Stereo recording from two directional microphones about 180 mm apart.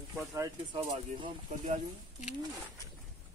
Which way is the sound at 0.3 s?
15° right (ahead or behind).